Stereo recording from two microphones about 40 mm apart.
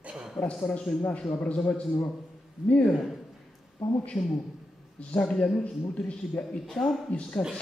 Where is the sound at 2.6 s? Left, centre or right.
Right.